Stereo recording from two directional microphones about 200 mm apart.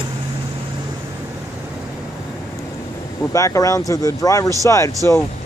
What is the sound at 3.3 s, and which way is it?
Speech, 15° left (ahead or behind).